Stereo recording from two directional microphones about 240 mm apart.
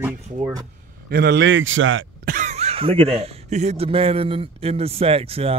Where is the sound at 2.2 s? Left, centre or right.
Right.